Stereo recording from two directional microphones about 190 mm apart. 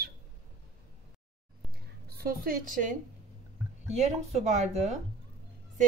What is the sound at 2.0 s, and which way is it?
A woman's voice, 50° right (ahead or behind).